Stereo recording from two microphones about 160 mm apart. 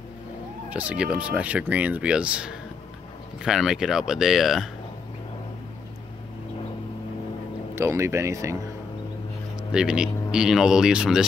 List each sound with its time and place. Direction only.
0.7 s speech: 10° right (ahead or behind)
7.7 s speech: 15° right (ahead or behind)
9.7 s speech: 5° right (ahead or behind)